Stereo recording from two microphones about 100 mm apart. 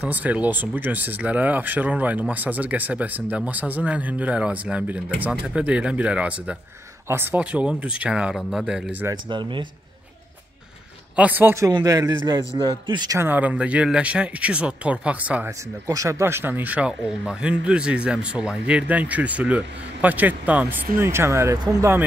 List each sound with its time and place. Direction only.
0.0 s speech: 15° right (ahead or behind)
9.1 s a man's voice: 50° right (ahead or behind)
11.1 s speech: 15° right (ahead or behind)
11.7 s a man's voice: 35° right (ahead or behind)
13.2 s speech: 15° right (ahead or behind)
15.9 s speech: 30° right (ahead or behind)